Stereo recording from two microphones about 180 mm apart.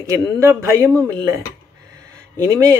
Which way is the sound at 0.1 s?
15° right (ahead or behind).